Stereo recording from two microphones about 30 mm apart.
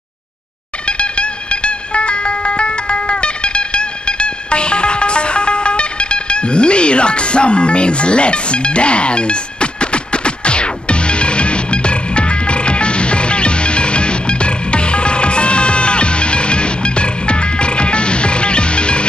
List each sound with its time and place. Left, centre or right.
0.8 s music: left